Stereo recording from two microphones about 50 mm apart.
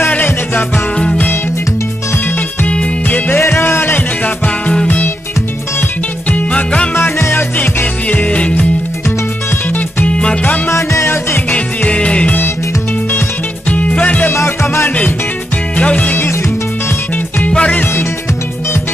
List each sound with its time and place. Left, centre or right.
0.1 s music: left
2.6 s music: left
3.3 s music: left
6.3 s music: left
7.0 s music: left
7.5 s music: left
10.0 s music: left
10.7 s music: left
11.5 s music: left
13.7 s music: left
14.3 s music: left
15.8 s music: left
17.5 s music: left